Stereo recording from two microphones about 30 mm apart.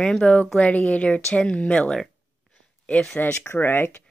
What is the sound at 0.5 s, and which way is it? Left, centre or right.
Speech, left.